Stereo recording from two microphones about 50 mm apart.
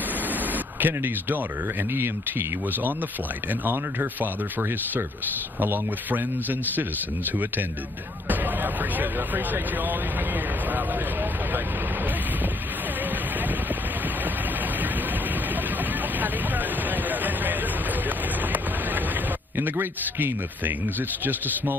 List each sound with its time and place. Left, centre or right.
0.7 s speech: right
3.6 s speech: right
8.9 s speech: right
16.2 s vehicle: right
19.6 s speech: right